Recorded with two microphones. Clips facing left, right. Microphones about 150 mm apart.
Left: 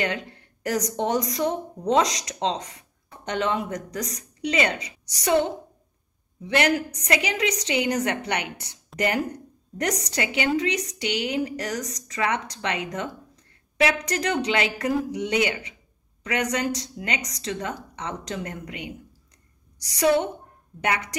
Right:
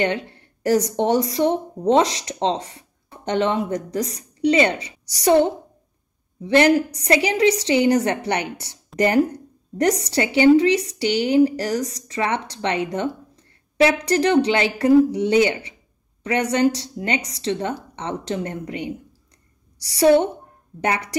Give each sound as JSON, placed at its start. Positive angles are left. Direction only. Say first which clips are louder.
{"t": 0.0, "sound": "a woman's voice", "louder": "right 6 dB", "side_deg": -30}